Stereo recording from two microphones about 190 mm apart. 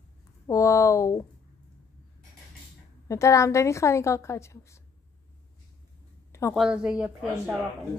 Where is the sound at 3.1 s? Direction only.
15° left (ahead or behind).